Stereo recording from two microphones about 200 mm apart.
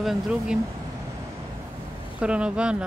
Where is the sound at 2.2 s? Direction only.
5° right (ahead or behind).